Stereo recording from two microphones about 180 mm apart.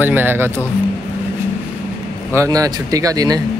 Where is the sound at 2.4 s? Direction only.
20° right (ahead or behind).